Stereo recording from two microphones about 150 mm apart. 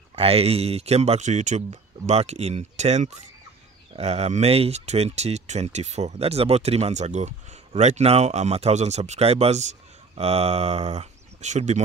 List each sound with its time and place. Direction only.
0.1 s speech: 40° right (ahead or behind)